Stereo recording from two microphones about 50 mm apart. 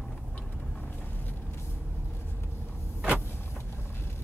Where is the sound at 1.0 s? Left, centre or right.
Left.